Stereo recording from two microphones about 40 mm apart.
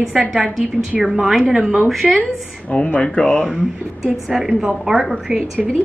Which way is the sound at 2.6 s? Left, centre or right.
Left.